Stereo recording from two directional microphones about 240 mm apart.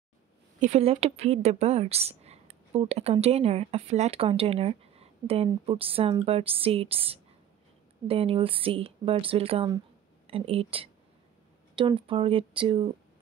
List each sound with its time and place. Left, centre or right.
0.6 s a woman's voice: right